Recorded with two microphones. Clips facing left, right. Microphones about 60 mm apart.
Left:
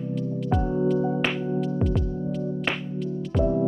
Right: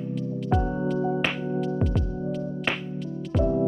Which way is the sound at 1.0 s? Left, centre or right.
Centre.